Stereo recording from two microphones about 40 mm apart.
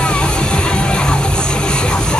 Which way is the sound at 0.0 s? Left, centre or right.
Left.